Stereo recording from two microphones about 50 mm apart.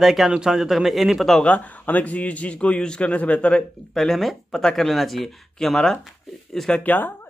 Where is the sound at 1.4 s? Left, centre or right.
Left.